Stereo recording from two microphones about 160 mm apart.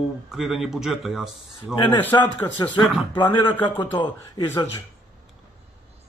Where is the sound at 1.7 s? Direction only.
30° left (ahead or behind).